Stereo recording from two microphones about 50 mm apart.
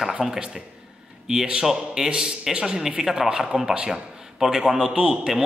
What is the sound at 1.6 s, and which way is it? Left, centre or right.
A man's voice, centre.